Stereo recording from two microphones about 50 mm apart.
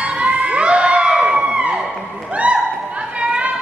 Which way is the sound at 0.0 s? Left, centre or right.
Right.